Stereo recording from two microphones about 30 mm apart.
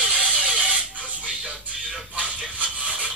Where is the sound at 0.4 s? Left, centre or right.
Right.